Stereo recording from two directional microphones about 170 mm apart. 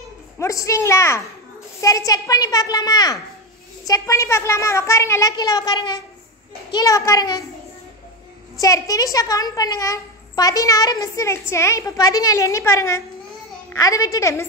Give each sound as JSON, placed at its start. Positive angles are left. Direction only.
{"t": 0.4, "sound": "a child's voice", "side_deg": 20}
{"t": 8.5, "sound": "a child's voice", "side_deg": 20}